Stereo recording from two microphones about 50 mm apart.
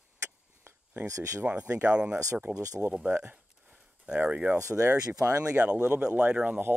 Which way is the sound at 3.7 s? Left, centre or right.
Centre.